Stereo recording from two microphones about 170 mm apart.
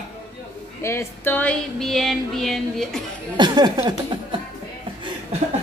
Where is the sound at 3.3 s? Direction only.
25° right (ahead or behind).